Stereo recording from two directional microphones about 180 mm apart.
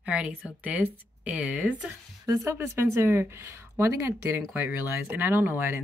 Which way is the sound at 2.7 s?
15° right (ahead or behind).